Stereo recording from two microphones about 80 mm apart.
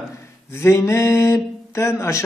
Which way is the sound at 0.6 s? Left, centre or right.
Left.